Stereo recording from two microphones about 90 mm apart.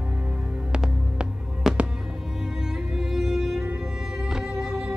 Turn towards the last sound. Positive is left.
turn(degrees=-10)  # may be behind; listen again after turning